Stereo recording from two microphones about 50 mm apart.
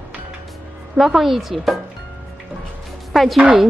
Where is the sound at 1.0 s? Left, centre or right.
Centre.